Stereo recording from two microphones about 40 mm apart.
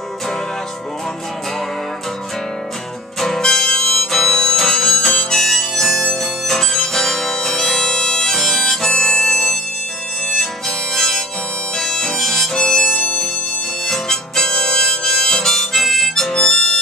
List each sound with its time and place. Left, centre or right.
3.2 s music: centre
3.4 s harmonica: centre
6.4 s music: centre
8.4 s harmonica: centre
11.0 s harmonica: centre
16.3 s harmonica: left